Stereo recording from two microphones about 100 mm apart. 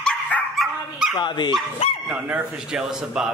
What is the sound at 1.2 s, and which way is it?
Speech, 50° left (ahead or behind).